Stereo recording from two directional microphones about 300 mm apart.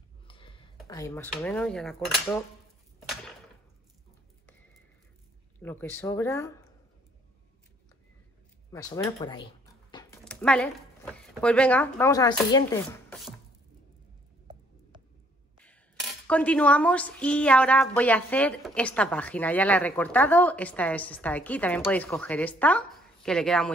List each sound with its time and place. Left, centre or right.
0.3 s a sound: centre
0.8 s dishes: centre
5.6 s speech: centre
8.7 s a sound: centre
11.2 s speech: centre
15.6 s dishes: centre